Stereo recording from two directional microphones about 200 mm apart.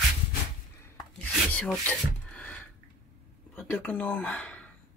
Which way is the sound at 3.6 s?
5° left (ahead or behind).